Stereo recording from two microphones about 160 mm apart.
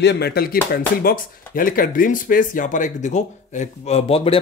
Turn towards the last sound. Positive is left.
turn(degrees=40)  # may be behind; listen again after turning